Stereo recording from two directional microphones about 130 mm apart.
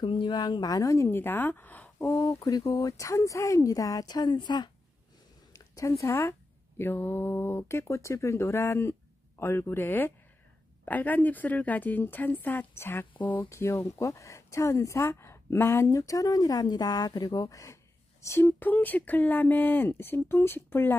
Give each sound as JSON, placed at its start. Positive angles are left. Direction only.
{"t": 0.0, "sound": "a woman's voice", "side_deg": 40}